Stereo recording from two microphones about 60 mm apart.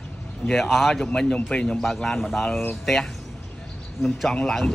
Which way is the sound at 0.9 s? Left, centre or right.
Centre.